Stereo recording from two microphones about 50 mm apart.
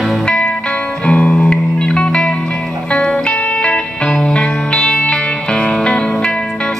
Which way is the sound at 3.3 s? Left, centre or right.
Left.